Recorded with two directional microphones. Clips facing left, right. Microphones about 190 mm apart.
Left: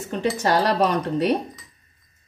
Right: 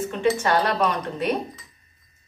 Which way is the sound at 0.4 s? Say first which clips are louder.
Left 2 dB; 35° left (ahead or behind).